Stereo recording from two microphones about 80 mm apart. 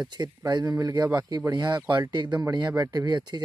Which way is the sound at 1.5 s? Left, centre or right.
Right.